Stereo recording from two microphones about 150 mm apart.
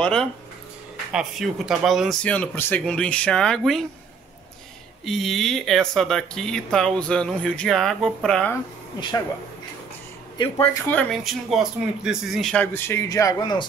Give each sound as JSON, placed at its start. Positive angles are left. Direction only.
{"t": 0.0, "sound": "speech", "side_deg": 5}
{"t": 5.0, "sound": "speech", "side_deg": 0}
{"t": 10.3, "sound": "speech", "side_deg": 30}
{"t": 11.2, "sound": "speech", "side_deg": -5}
{"t": 12.7, "sound": "speech", "side_deg": 15}